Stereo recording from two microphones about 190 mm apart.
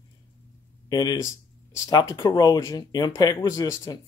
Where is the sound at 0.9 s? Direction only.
20° left (ahead or behind).